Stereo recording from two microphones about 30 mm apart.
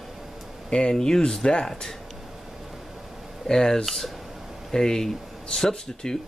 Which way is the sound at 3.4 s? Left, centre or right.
Centre.